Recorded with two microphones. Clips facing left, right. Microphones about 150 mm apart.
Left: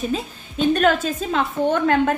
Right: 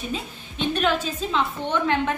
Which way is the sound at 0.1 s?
45° left (ahead or behind).